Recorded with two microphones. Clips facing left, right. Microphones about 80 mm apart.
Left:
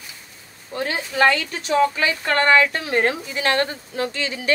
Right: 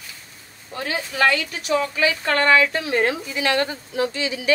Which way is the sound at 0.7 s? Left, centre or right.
Left.